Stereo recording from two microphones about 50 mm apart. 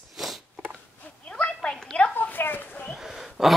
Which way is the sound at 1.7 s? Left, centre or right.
Centre.